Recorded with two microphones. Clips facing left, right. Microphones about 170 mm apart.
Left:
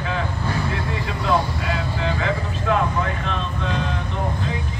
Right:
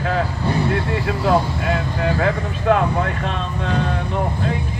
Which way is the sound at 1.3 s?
50° right (ahead or behind).